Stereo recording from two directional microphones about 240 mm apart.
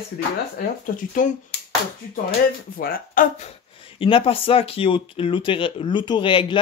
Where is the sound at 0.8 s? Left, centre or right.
Left.